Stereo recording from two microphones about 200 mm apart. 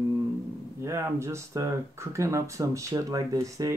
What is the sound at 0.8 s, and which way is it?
Speech, 15° right (ahead or behind).